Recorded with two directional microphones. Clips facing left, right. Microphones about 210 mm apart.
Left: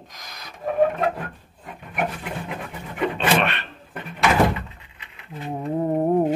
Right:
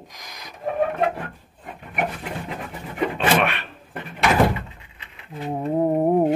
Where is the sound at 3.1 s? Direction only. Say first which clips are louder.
Right 2 dB; 10° right (ahead or behind).